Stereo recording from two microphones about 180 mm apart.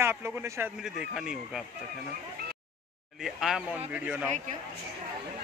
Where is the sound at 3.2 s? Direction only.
Centre (ahead or behind).